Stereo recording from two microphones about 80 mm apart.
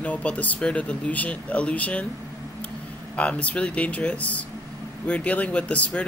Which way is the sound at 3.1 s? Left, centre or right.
Centre.